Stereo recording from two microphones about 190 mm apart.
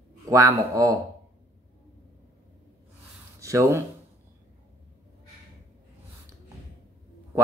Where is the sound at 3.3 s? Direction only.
15° right (ahead or behind).